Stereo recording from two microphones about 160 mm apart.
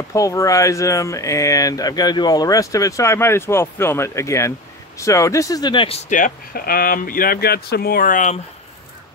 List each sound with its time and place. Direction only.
0.1 s speech: 20° left (ahead or behind)
6.0 s speech: 55° left (ahead or behind)